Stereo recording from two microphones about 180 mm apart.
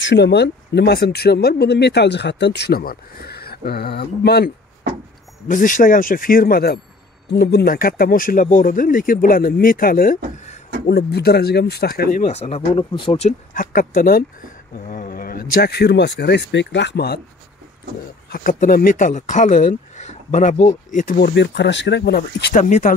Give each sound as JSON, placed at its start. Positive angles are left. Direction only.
{"t": 0.0, "sound": "speech", "side_deg": 75}
{"t": 5.5, "sound": "speech", "side_deg": 45}
{"t": 10.9, "sound": "speech", "side_deg": 65}
{"t": 13.5, "sound": "speech", "side_deg": 50}
{"t": 18.3, "sound": "speech", "side_deg": 50}
{"t": 22.5, "sound": "speech", "side_deg": 45}